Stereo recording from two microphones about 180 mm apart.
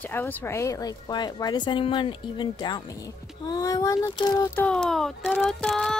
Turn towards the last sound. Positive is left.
turn(degrees=5)  # may be behind; listen again after turning